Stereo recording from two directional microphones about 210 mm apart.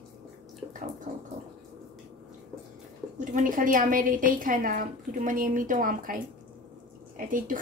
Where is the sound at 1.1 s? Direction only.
40° right (ahead or behind).